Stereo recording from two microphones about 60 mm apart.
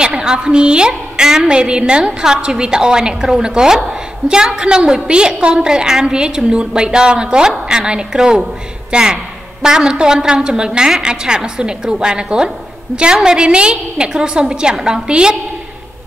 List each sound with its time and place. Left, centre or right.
0.0 s a woman's voice: centre